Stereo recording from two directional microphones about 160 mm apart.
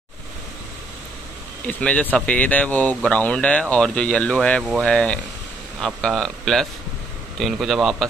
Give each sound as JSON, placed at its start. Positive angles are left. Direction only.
{"t": 1.7, "sound": "speech", "side_deg": 10}